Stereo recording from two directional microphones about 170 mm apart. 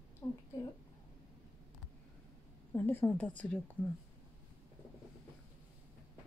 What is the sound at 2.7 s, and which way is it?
Speech, 10° left (ahead or behind).